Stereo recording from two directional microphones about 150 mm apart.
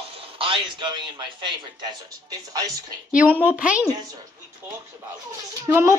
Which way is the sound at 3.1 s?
10° right (ahead or behind).